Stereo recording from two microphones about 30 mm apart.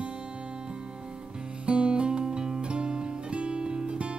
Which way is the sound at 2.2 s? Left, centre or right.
Right.